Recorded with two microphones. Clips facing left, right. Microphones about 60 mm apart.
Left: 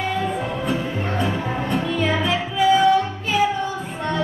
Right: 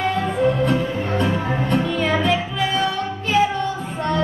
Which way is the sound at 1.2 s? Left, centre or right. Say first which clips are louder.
Right 2 dB; centre.